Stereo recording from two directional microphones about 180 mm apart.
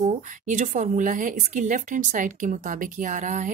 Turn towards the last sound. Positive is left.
turn(degrees=-45)  # may be behind; listen again after turning